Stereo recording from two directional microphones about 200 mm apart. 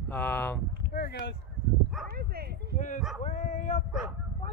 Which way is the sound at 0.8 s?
50° left (ahead or behind).